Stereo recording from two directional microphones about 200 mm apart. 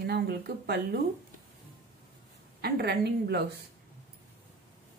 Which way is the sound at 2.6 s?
55° right (ahead or behind).